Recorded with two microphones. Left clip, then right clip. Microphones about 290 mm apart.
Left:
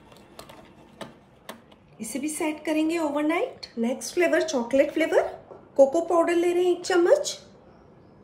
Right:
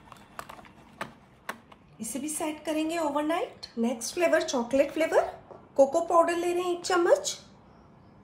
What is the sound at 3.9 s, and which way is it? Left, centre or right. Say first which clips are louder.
A woman's voice: left 2 dB; left.